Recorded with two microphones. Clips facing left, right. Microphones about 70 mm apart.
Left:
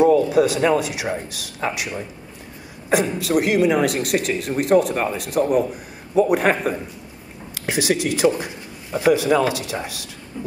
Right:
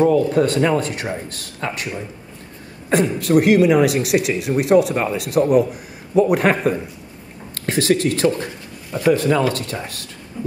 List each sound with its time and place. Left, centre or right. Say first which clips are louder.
0.3 s a man's voice: even; centre
2.9 s a man's voice: right 3 dB; centre